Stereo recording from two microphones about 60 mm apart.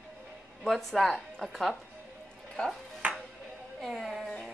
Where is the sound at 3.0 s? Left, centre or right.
Right.